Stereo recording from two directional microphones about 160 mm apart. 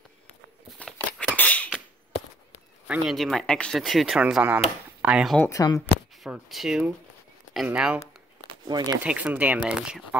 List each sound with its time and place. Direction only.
0.7 s a sound: centre (ahead or behind)
1.3 s rodents: 10° left (ahead or behind)
2.9 s speech: centre (ahead or behind)
5.4 s speech: 20° left (ahead or behind)
6.2 s speech: centre (ahead or behind)
8.5 s a sound: 25° right (ahead or behind)
8.9 s speech: 10° right (ahead or behind)